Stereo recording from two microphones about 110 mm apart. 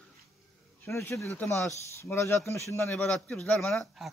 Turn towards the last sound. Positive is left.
turn(degrees=5)  # may be behind; listen again after turning